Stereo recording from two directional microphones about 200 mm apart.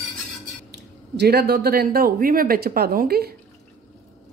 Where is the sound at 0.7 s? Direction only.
55° right (ahead or behind).